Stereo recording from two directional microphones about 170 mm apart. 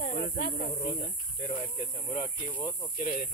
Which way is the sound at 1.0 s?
35° left (ahead or behind).